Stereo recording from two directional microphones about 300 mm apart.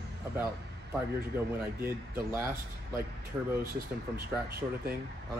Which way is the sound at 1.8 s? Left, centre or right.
Centre.